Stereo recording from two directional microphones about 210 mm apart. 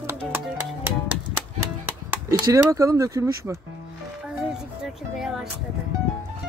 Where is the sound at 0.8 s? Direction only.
10° right (ahead or behind).